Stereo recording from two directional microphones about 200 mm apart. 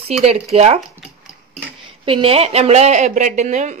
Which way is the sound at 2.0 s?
25° right (ahead or behind).